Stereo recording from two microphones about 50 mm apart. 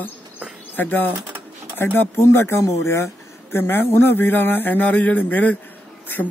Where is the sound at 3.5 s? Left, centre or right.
Left.